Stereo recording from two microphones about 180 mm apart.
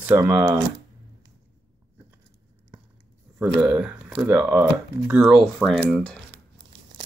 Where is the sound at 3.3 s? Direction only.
5° right (ahead or behind).